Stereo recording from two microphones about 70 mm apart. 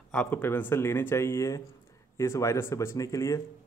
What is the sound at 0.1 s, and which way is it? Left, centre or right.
Speech, centre.